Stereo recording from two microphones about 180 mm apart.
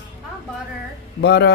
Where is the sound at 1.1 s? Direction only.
70° left (ahead or behind).